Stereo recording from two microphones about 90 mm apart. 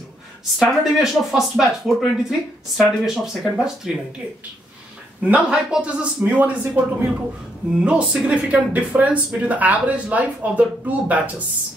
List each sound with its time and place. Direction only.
0.6 s speech: 5° right (ahead or behind)
5.2 s speech: 15° right (ahead or behind)